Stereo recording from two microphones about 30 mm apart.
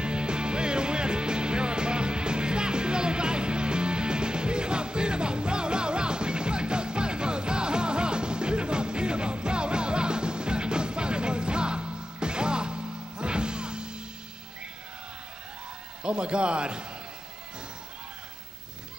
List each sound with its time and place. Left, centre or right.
0.0 s music: right
16.0 s a man's voice: right